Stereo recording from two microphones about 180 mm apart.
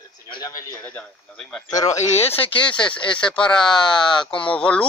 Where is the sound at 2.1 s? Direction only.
35° left (ahead or behind).